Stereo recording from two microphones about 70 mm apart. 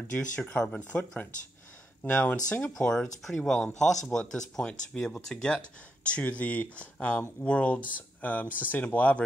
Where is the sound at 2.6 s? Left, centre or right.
Centre.